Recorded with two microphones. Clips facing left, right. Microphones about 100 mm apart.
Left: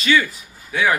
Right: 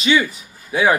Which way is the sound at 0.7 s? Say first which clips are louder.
Right 3 dB; 25° right (ahead or behind).